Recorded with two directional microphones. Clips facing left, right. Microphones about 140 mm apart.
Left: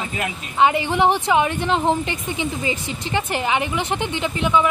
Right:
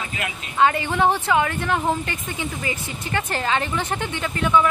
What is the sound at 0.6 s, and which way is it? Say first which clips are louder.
A woman's voice: left 2 dB; 20° left (ahead or behind).